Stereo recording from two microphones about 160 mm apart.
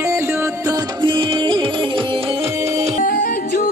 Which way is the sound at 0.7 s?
30° right (ahead or behind).